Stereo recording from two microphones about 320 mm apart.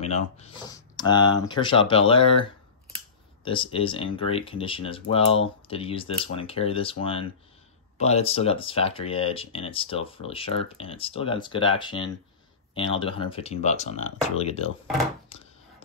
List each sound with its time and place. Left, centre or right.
0.0 s speech: centre